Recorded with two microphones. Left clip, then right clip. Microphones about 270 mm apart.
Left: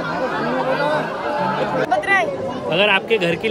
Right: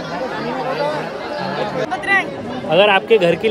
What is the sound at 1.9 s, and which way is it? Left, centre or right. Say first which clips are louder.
Speech: even; left.